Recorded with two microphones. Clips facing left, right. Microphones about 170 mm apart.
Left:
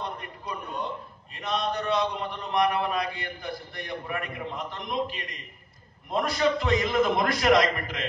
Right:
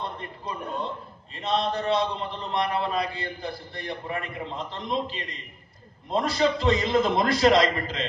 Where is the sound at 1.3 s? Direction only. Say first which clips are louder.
Right 3 dB; 25° right (ahead or behind).